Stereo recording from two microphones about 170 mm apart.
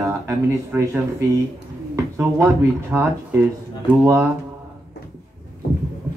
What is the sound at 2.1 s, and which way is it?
Speech, 15° right (ahead or behind).